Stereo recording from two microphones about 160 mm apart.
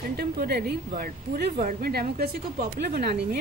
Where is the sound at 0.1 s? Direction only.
75° right (ahead or behind).